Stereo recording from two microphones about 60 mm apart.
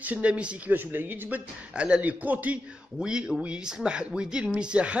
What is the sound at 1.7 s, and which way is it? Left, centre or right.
Speech, centre.